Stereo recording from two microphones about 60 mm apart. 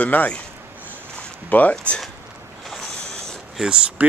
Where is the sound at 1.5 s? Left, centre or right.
Left.